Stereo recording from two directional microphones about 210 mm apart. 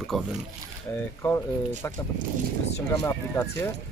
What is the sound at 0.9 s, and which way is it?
Speech, 15° left (ahead or behind).